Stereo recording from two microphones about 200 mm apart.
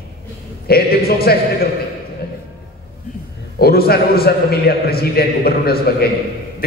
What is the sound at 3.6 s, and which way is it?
A man's voice, 50° left (ahead or behind).